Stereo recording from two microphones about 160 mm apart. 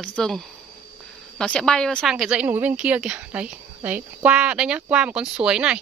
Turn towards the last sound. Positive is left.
turn(degrees=-5)  # may be behind; listen again after turning